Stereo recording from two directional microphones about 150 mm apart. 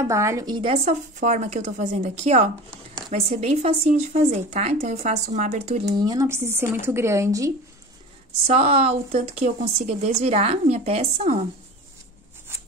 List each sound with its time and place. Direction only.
0.0 s speech: 20° right (ahead or behind)
0.6 s speech: 35° right (ahead or behind)
1.2 s a woman's voice: 50° right (ahead or behind)
5.9 s speech: 25° right (ahead or behind)
8.5 s a woman's voice: 45° right (ahead or behind)